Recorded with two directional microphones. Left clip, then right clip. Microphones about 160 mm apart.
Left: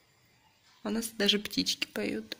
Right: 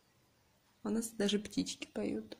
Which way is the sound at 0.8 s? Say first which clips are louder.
Left 7 dB; 15° right (ahead or behind).